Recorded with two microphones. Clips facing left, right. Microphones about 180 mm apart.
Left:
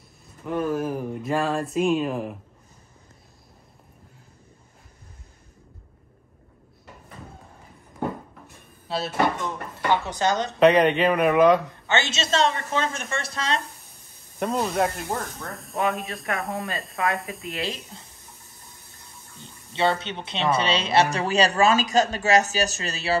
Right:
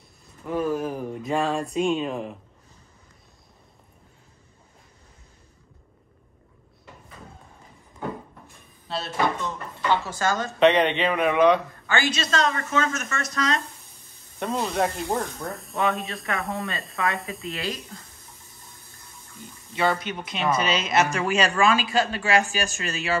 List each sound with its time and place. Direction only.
0.5 s speech: centre (ahead or behind)
8.8 s dishes: centre (ahead or behind)
9.8 s a woman's voice: 20° left (ahead or behind)
10.6 s speech: centre (ahead or behind)
11.9 s a woman's voice: 25° left (ahead or behind)
14.4 s speech: centre (ahead or behind)
17.6 s a woman's voice: 25° left (ahead or behind)
19.4 s speech: 25° left (ahead or behind)